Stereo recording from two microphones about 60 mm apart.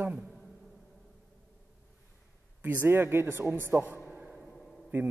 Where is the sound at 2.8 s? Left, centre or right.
Right.